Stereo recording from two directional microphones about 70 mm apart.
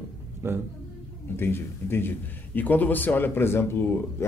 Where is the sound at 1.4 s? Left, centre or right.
Left.